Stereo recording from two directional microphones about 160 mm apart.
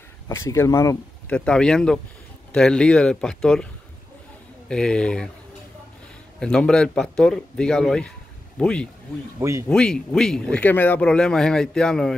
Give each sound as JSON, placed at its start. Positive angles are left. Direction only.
{"t": 0.3, "sound": "speech", "side_deg": 20}
{"t": 1.3, "sound": "speech", "side_deg": 5}
{"t": 4.6, "sound": "speech", "side_deg": 5}
{"t": 6.4, "sound": "speech", "side_deg": 5}
{"t": 9.4, "sound": "speech", "side_deg": -20}
{"t": 9.7, "sound": "speech", "side_deg": 5}